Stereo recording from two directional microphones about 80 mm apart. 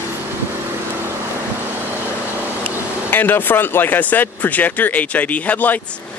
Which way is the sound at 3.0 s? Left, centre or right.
Left.